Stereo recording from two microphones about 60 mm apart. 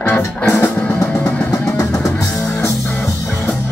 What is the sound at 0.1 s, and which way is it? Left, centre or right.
Music, centre.